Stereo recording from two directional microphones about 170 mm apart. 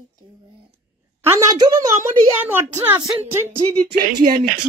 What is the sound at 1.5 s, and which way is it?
A woman's voice, 20° right (ahead or behind).